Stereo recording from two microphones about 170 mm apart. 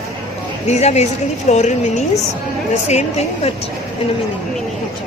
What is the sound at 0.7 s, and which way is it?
A woman's voice, 40° left (ahead or behind).